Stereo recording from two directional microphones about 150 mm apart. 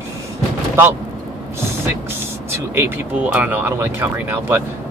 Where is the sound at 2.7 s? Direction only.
15° right (ahead or behind).